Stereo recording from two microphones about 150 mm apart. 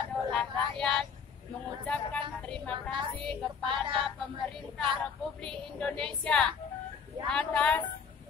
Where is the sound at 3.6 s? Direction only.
35° right (ahead or behind).